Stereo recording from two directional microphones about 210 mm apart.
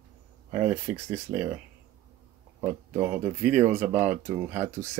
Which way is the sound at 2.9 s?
10° right (ahead or behind).